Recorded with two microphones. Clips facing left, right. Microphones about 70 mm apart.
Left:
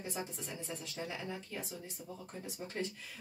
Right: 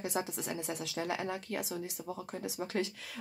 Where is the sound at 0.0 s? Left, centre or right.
Right.